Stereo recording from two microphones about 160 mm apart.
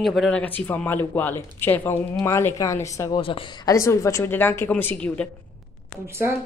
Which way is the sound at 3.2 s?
35° left (ahead or behind).